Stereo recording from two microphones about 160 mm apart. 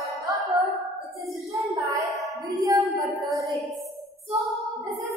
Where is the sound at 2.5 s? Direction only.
20° right (ahead or behind).